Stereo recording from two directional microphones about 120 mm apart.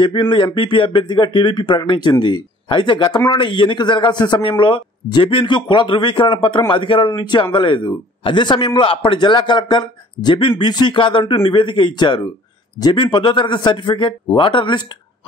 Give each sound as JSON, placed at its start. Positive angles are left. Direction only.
{"t": 0.0, "sound": "a man's voice", "side_deg": 40}